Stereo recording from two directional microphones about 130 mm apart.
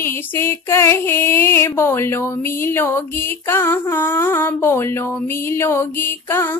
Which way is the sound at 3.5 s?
15° left (ahead or behind).